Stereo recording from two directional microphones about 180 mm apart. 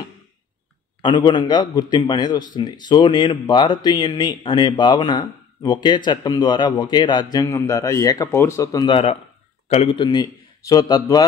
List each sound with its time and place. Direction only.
1.0 s speech: 25° left (ahead or behind)
8.8 s speech: 30° left (ahead or behind)